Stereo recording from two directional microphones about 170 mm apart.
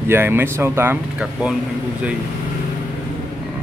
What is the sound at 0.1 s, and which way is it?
Speech, 10° right (ahead or behind).